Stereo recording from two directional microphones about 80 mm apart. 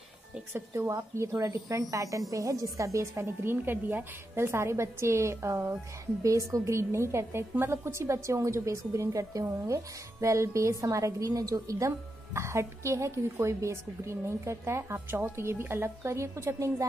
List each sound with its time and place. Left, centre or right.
0.5 s a woman's voice: right
0.8 s a woman's voice: right